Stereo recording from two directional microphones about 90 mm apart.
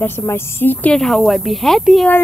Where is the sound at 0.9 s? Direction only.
5° left (ahead or behind).